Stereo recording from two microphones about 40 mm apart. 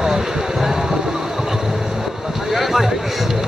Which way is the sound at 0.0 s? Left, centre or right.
Centre.